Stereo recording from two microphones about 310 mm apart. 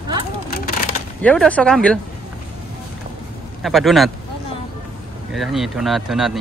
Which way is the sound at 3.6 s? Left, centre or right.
Centre.